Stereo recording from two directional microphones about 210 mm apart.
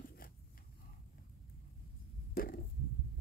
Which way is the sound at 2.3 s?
45° left (ahead or behind).